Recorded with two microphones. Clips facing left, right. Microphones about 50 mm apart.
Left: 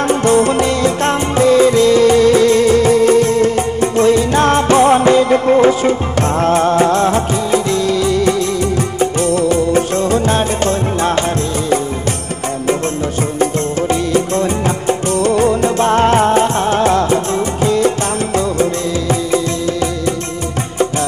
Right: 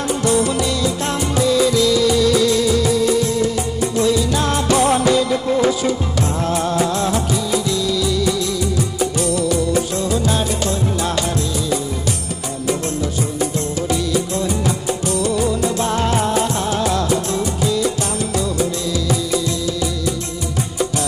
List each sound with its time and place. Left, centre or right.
0.1 s music: left
13.4 s music: left